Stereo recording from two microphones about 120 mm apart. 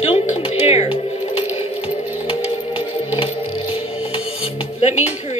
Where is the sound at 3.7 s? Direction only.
50° left (ahead or behind).